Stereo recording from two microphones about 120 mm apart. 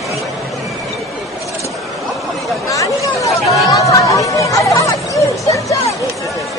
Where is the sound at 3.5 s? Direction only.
30° left (ahead or behind).